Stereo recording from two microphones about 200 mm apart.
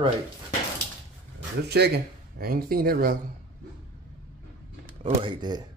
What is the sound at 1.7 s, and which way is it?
Speech, 55° right (ahead or behind).